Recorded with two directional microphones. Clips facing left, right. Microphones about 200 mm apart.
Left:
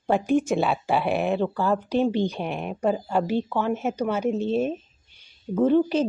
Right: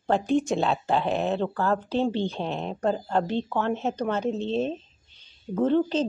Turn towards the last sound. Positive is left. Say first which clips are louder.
# left 3 dB
turn(degrees=10)  # may be behind; listen again after turning